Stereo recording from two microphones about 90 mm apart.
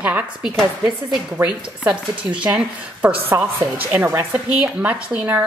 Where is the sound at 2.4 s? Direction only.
15° right (ahead or behind).